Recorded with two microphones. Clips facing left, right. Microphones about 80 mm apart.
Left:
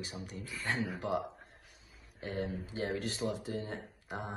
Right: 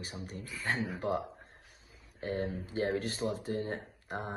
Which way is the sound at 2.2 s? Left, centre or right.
Right.